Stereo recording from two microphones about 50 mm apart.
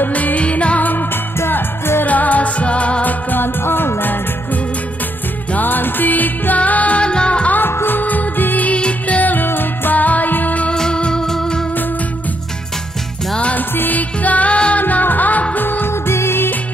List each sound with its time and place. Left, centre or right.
0.0 s music: left
2.0 s music: left
7.7 s music: left
10.7 s organ: centre
13.6 s music: left